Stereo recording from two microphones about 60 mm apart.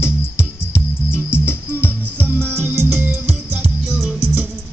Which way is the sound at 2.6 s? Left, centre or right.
Right.